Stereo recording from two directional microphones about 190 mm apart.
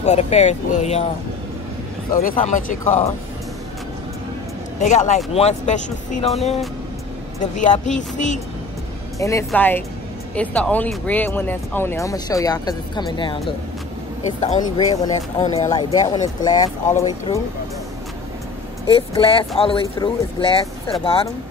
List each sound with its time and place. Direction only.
0.0 s speech: 35° left (ahead or behind)
2.2 s speech: 45° left (ahead or behind)
4.7 s speech: 40° left (ahead or behind)
7.6 s speech: 40° left (ahead or behind)
9.2 s speech: 15° left (ahead or behind)
14.6 s speech: 20° left (ahead or behind)
15.4 s speech: 35° left (ahead or behind)
15.7 s speech: 20° left (ahead or behind)
18.9 s speech: 30° left (ahead or behind)